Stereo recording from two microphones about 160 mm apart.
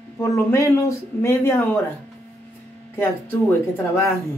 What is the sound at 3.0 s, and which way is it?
Speech, 15° left (ahead or behind).